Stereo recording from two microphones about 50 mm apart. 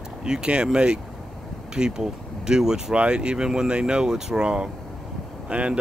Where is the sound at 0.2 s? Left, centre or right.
Centre.